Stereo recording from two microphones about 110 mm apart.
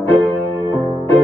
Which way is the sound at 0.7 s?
55° right (ahead or behind).